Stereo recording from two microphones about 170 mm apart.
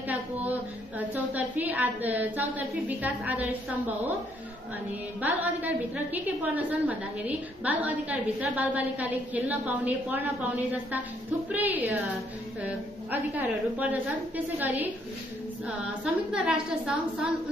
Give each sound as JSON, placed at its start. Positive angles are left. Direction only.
{"t": 0.9, "sound": "a woman's voice", "side_deg": -10}
{"t": 5.2, "sound": "a woman's voice", "side_deg": -10}